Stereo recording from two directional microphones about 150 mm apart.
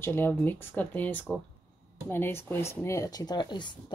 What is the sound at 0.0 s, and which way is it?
Speech, 15° left (ahead or behind).